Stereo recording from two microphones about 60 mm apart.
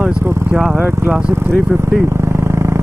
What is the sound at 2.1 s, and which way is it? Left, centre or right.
Vehicle, right.